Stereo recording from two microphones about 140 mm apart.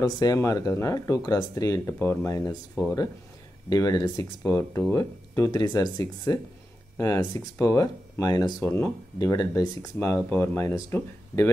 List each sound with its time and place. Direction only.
0.0 s speech: 25° left (ahead or behind)
3.7 s speech: 25° left (ahead or behind)
9.9 s speech: 10° left (ahead or behind)